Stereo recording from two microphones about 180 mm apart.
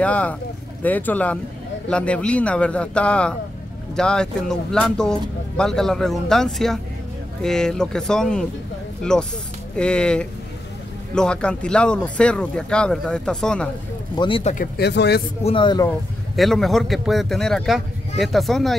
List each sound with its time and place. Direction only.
0.0 s speech: 5° left (ahead or behind)
14.1 s a man's voice: 25° left (ahead or behind)
14.4 s speech: 45° left (ahead or behind)
14.8 s speech: 65° left (ahead or behind)
15.4 s a man's voice: 25° left (ahead or behind)
16.3 s speech: centre (ahead or behind)